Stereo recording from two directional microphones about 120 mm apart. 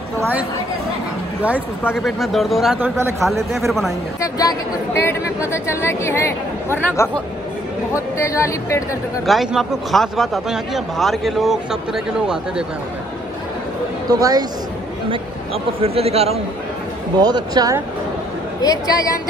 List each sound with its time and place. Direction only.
0.2 s a woman's voice: 15° right (ahead or behind)
2.0 s a man's voice: centre (ahead or behind)
2.8 s speech: 20° right (ahead or behind)
3.5 s a man's voice: centre (ahead or behind)
4.2 s a woman's voice: 30° left (ahead or behind)
9.2 s a man's voice: centre (ahead or behind)
14.1 s speech: 35° right (ahead or behind)
15.0 s a man's voice: 50° right (ahead or behind)
17.2 s speech: 35° right (ahead or behind)
18.6 s a woman's voice: 30° left (ahead or behind)